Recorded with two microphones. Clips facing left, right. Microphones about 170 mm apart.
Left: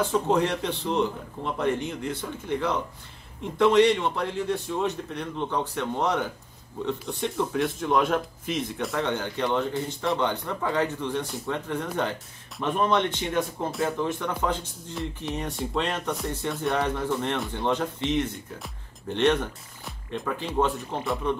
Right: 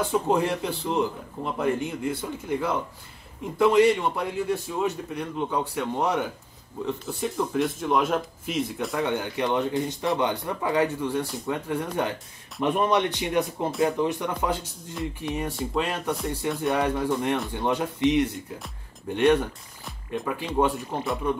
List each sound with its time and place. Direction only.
0.0 s a man's voice: 10° right (ahead or behind)
12.0 s a man's voice: 10° right (ahead or behind)
15.0 s a man's voice: centre (ahead or behind)